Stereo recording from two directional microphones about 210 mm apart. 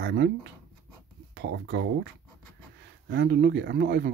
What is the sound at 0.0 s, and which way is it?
Speech, 50° right (ahead or behind).